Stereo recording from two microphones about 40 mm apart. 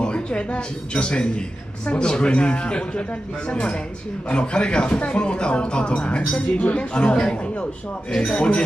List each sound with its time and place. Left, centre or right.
0.0 s a woman's voice: left